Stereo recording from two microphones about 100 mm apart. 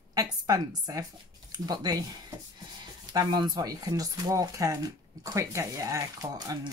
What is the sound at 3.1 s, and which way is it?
Speech, 45° right (ahead or behind).